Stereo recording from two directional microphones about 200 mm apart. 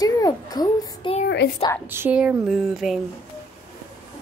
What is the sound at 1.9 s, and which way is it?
Speech, 10° right (ahead or behind).